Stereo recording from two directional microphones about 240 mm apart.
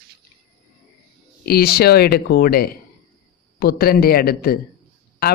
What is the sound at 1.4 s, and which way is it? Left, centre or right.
Speech, left.